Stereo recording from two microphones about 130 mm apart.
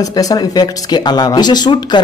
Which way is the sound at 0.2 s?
30° left (ahead or behind).